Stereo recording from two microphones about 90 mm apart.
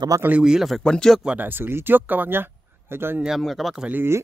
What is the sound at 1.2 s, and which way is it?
Speech, 20° right (ahead or behind).